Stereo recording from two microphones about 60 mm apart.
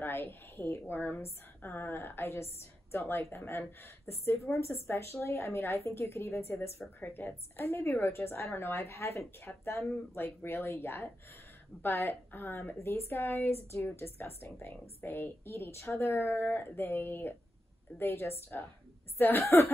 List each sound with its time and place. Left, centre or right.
0.0 s a woman's voice: left
7.0 s a woman's voice: left